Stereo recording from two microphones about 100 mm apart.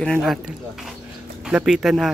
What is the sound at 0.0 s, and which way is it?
Speech, 5° left (ahead or behind).